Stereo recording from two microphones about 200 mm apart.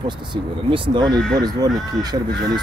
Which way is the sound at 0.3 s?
25° right (ahead or behind).